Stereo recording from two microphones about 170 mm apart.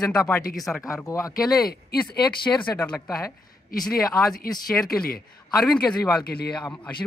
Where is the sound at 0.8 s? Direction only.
20° left (ahead or behind).